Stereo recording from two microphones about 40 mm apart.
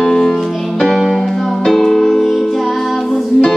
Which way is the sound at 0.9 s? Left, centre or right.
Centre.